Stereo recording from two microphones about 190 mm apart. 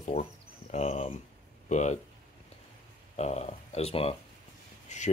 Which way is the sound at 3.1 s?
35° left (ahead or behind).